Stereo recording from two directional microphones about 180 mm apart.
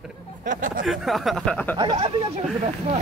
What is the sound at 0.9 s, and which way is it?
Speech, centre (ahead or behind).